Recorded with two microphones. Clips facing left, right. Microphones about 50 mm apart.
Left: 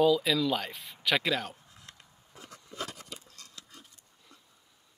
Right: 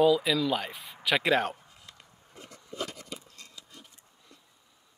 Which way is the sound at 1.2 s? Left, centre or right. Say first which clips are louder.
Right 6 dB; right.